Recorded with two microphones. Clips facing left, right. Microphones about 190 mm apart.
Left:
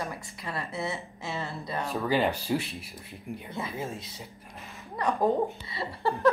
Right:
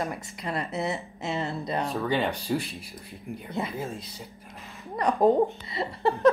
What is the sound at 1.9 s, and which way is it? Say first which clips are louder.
Speech: left 3 dB; centre (ahead or behind).